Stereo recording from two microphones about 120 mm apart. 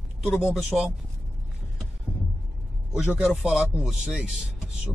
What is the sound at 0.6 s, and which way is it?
Speech, 5° right (ahead or behind).